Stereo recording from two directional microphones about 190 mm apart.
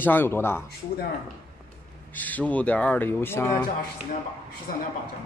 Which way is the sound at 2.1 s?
10° left (ahead or behind).